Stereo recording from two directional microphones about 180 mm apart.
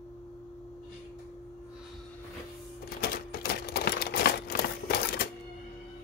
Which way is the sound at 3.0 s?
60° left (ahead or behind).